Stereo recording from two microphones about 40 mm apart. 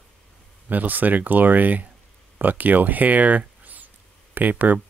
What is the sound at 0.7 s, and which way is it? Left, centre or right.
Speech, right.